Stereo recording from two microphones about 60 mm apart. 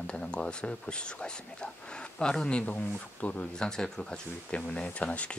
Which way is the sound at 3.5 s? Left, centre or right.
Centre.